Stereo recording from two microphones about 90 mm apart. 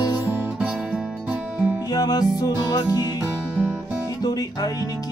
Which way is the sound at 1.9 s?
45° left (ahead or behind).